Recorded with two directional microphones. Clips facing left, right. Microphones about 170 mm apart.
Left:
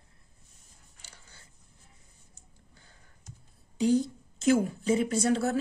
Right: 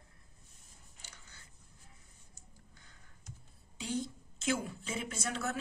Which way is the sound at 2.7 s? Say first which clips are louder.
Left 2 dB; 30° left (ahead or behind).